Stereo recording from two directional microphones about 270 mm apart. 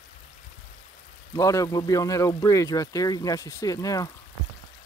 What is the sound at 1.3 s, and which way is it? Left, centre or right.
Speech, centre.